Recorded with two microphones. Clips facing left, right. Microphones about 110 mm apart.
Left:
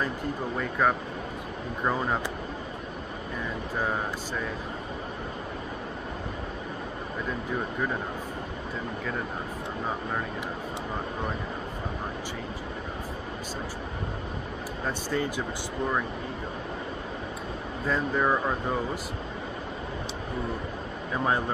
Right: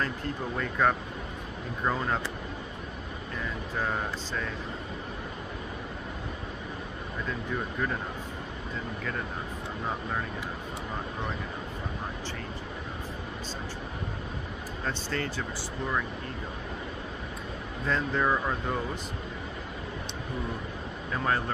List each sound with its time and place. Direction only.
0.6 s speech: 5° left (ahead or behind)
14.9 s speech: 10° left (ahead or behind)
17.8 s speech: 10° left (ahead or behind)
21.1 s speech: 15° left (ahead or behind)